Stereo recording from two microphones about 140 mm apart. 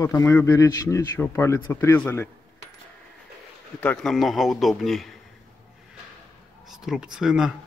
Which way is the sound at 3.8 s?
10° left (ahead or behind).